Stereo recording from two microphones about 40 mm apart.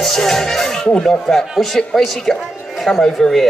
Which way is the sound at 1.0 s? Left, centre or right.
Centre.